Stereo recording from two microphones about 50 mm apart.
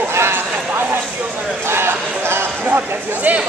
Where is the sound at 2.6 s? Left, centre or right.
Right.